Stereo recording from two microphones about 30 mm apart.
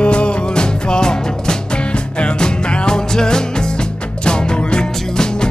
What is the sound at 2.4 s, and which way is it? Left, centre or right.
Music, left.